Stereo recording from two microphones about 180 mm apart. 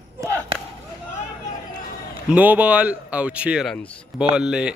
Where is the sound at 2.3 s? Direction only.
10° right (ahead or behind).